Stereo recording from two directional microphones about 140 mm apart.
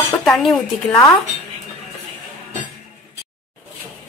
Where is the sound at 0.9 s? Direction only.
20° left (ahead or behind).